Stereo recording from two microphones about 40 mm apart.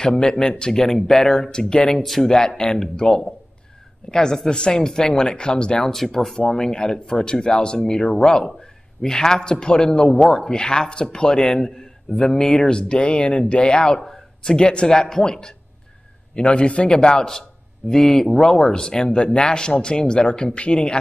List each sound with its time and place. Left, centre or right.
0.0 s speech: centre
2.0 s speech: centre
2.3 s a man's voice: centre